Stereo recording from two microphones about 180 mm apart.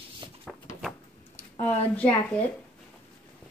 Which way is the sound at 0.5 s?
Centre (ahead or behind).